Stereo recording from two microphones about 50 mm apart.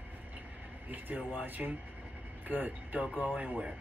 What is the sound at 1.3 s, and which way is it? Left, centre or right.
Speech, right.